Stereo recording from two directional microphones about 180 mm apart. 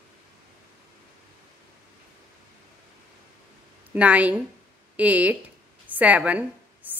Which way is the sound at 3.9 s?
10° right (ahead or behind).